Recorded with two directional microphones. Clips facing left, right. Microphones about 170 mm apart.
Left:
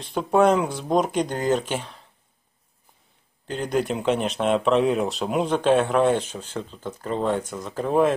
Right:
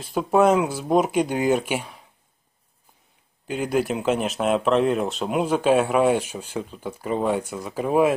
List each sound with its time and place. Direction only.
0.0 s speech: 5° right (ahead or behind)
3.4 s speech: 5° right (ahead or behind)